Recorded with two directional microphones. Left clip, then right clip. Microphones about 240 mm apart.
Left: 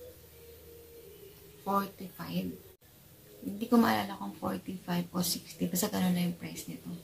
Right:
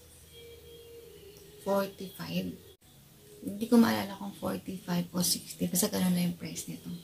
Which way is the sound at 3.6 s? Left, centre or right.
Centre.